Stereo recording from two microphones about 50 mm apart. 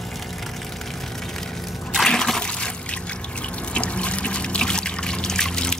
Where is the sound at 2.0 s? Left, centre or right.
Centre.